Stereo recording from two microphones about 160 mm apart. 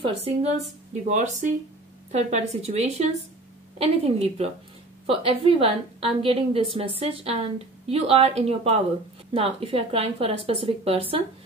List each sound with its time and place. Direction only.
0.0 s a woman's voice: 40° right (ahead or behind)